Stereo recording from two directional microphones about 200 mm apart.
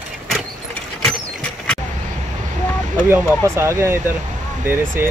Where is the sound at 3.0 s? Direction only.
10° right (ahead or behind).